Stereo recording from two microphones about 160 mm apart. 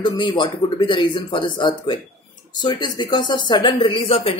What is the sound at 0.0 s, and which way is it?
Speech, 30° left (ahead or behind).